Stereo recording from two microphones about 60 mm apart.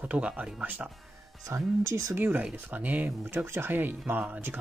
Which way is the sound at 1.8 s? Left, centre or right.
Right.